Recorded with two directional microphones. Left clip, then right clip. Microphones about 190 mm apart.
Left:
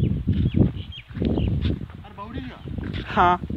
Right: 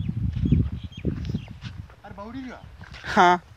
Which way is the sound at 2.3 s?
10° right (ahead or behind).